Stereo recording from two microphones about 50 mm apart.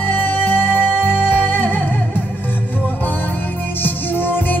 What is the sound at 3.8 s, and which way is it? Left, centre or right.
Music, left.